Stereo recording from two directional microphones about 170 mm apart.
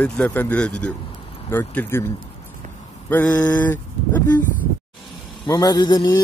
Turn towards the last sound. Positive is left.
turn(degrees=25)  # may be behind; listen again after turning